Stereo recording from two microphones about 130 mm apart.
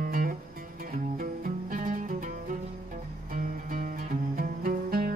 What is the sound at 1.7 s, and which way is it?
Music, 90° right.